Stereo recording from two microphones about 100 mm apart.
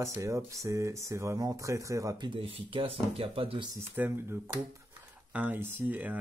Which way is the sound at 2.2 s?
70° right (ahead or behind).